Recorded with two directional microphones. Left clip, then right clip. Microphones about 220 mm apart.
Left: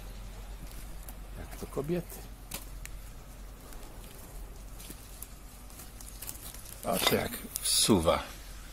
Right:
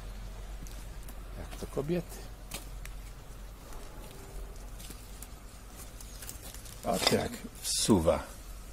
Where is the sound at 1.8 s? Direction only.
5° left (ahead or behind).